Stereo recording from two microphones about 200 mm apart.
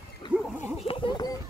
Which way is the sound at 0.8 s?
25° left (ahead or behind).